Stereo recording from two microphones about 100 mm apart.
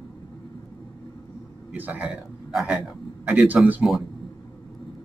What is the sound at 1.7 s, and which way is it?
A man's voice, 15° right (ahead or behind).